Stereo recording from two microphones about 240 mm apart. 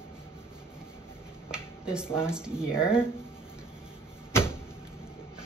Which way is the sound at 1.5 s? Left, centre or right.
Centre.